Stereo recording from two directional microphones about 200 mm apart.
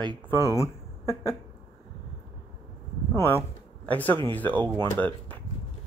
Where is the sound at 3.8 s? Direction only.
10° left (ahead or behind).